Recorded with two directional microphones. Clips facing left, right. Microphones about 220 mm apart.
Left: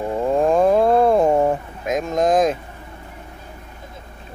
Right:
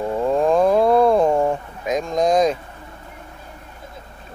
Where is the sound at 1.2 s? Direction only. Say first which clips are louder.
Left 1 dB; 20° left (ahead or behind).